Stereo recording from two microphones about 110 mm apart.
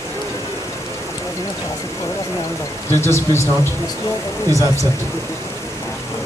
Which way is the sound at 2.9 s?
25° left (ahead or behind).